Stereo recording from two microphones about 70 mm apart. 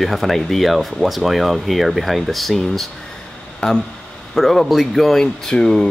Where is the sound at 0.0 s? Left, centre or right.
Centre.